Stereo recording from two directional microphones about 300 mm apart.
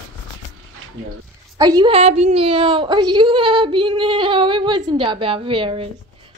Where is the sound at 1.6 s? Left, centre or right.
Centre.